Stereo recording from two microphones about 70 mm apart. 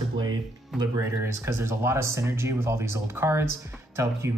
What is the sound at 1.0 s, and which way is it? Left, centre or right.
Speech, right.